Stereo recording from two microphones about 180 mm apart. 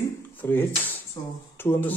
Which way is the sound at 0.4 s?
10° left (ahead or behind).